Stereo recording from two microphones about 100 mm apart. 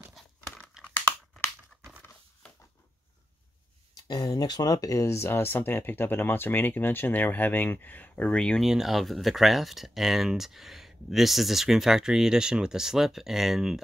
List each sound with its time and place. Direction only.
0.8 s a sound: 10° left (ahead or behind)
3.9 s speech: 40° left (ahead or behind); by 8.6 s 10° left (ahead or behind)
8.6 s speech: 5° right (ahead or behind)